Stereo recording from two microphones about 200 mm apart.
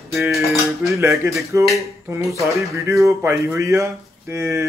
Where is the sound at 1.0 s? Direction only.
15° right (ahead or behind).